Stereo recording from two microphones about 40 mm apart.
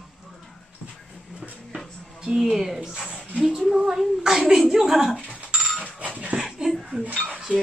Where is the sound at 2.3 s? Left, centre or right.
Centre.